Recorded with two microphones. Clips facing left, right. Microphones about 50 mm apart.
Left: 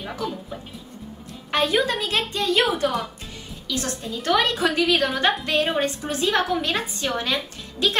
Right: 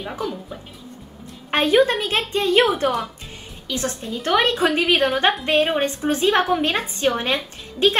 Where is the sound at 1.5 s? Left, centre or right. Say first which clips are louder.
Right 5 dB; right.